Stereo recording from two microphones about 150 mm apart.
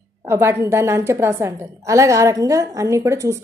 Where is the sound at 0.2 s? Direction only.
15° right (ahead or behind).